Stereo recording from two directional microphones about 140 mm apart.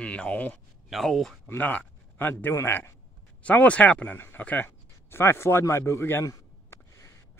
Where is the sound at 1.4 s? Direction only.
10° left (ahead or behind).